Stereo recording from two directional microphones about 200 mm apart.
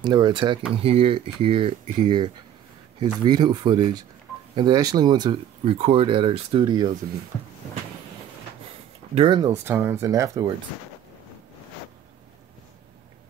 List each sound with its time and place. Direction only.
0.0 s speech: 20° right (ahead or behind)
9.1 s speech: 25° right (ahead or behind)